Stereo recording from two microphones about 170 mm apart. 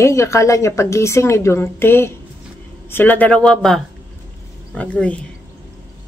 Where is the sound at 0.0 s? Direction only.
15° left (ahead or behind).